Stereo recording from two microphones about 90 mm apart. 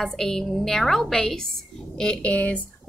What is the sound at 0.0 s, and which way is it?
A woman's voice, 5° left (ahead or behind).